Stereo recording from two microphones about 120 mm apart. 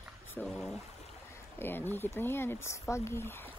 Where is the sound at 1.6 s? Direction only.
15° left (ahead or behind).